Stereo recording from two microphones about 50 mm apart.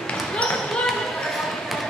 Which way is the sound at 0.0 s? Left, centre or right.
Centre.